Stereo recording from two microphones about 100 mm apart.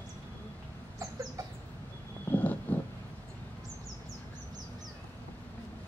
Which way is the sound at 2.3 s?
15° left (ahead or behind).